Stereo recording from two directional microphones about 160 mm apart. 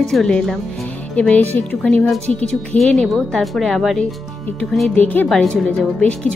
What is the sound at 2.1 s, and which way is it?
Speech, 45° right (ahead or behind).